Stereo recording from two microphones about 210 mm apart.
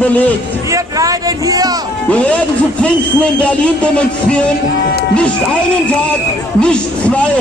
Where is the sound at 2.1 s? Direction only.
5° left (ahead or behind).